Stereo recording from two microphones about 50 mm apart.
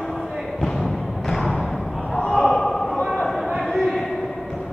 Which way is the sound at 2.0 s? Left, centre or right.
Centre.